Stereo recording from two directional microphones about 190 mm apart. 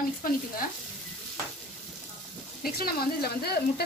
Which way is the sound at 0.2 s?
45° left (ahead or behind).